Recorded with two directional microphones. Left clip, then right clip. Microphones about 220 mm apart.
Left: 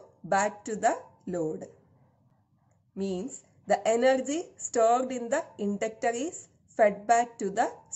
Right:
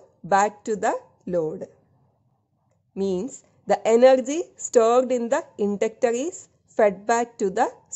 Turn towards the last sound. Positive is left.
turn(degrees=-45)  # may be behind; listen again after turning